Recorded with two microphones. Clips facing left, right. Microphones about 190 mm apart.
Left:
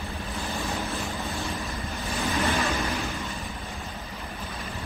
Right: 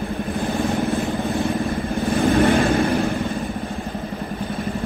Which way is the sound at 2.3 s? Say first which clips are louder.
Right 9 dB; 55° right (ahead or behind).